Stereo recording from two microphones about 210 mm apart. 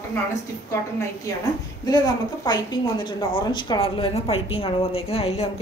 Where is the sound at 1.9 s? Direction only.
20° left (ahead or behind).